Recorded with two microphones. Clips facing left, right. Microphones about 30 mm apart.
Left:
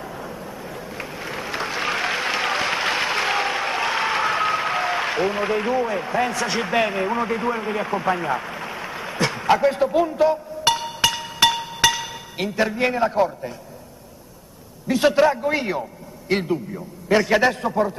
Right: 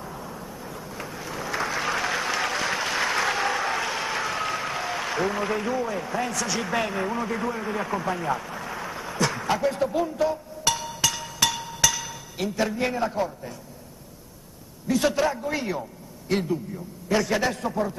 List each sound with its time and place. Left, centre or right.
0.0 s vehicle: left
14.9 s a man's voice: left